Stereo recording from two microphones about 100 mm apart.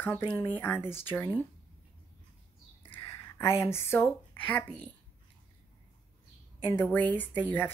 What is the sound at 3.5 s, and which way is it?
Speech, 25° left (ahead or behind).